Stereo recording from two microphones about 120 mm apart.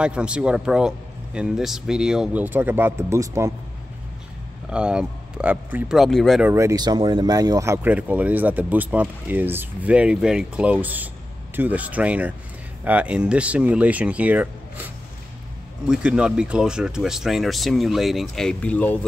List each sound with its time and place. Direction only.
0.0 s speech: 10° right (ahead or behind)
2.4 s speech: 15° right (ahead or behind)
4.6 s speech: 10° right (ahead or behind)
5.9 s speech: centre (ahead or behind)
6.4 s speech: 25° right (ahead or behind)
7.9 s speech: 10° right (ahead or behind)
15.9 s speech: 10° right (ahead or behind); by 18.9 s 10° left (ahead or behind)